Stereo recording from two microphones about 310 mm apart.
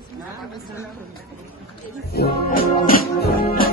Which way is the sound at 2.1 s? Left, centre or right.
Left.